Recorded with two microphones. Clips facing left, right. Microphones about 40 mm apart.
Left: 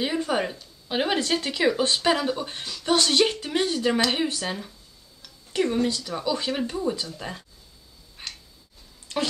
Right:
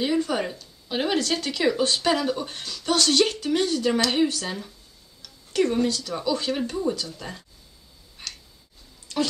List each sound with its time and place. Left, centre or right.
0.0 s speech: centre
5.2 s a sound: left
5.9 s speech: centre
7.2 s speech: centre
8.2 s tick: centre
9.0 s a sound: left